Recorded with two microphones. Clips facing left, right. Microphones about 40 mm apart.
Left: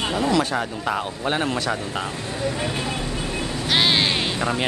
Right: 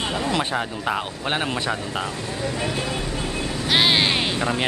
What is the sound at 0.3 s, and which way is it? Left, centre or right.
Speech, right.